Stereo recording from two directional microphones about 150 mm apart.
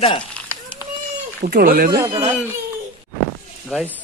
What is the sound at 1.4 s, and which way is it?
Speech, 85° right.